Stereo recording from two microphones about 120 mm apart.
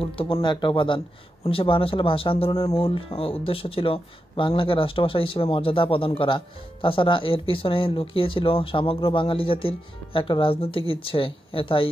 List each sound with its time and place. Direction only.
0.0 s speech: 50° left (ahead or behind)